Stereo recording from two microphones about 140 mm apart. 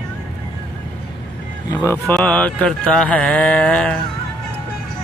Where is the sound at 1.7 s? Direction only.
20° left (ahead or behind).